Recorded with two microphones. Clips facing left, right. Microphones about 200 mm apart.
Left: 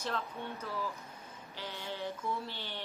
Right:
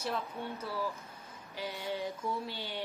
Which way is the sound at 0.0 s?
10° right (ahead or behind).